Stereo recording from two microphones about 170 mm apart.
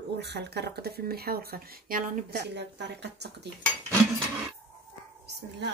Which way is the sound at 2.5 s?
85° right.